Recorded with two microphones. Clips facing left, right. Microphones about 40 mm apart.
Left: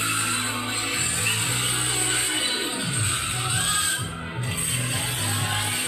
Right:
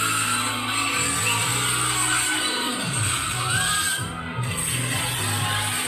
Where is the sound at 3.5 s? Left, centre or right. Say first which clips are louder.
Right 3 dB; right.